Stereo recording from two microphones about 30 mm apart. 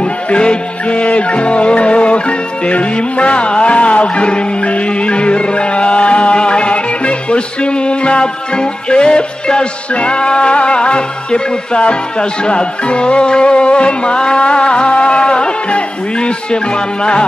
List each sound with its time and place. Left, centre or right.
0.0 s music: left